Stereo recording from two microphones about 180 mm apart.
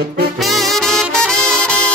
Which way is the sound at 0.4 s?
Centre (ahead or behind).